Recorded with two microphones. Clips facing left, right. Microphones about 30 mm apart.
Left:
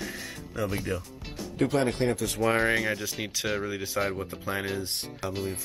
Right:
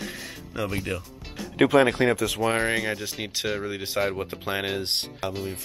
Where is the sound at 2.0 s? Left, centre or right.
Right.